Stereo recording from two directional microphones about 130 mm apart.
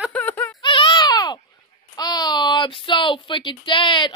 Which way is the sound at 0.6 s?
40° left (ahead or behind).